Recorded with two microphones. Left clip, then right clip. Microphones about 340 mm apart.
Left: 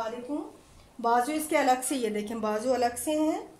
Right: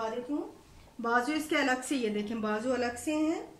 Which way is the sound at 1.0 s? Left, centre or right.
Centre.